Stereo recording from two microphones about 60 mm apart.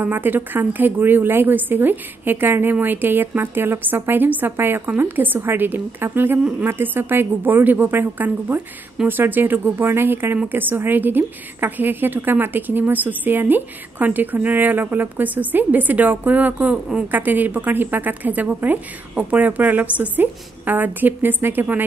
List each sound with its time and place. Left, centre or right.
0.0 s a woman's voice: right